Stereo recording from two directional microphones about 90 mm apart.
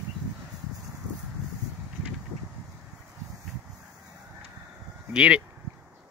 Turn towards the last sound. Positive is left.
turn(degrees=-10)  # may be behind; listen again after turning